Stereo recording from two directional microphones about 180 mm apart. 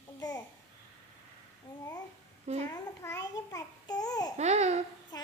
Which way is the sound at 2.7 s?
20° left (ahead or behind).